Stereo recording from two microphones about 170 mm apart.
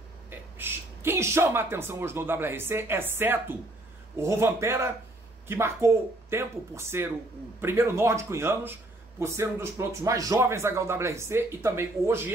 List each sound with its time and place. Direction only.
0.3 s speech: 10° right (ahead or behind)